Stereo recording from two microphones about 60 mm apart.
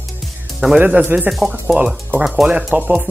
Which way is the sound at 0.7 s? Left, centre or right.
Right.